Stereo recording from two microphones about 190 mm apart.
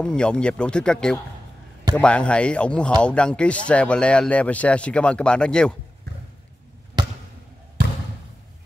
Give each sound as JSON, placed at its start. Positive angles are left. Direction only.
{"t": 0.0, "sound": "speech", "side_deg": 5}
{"t": 6.1, "sound": "clip-clop", "side_deg": -60}
{"t": 7.0, "sound": "basketball bounce", "side_deg": -20}